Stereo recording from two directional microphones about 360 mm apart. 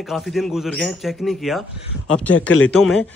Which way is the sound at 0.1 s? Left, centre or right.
Centre.